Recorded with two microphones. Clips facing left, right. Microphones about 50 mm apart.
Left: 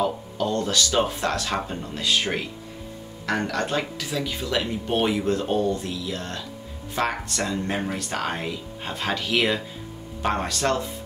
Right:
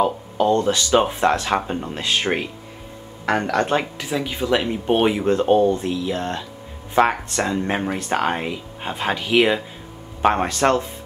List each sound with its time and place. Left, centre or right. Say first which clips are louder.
0.0 s speech: right 6 dB; right
10.2 s speech: right 7 dB; right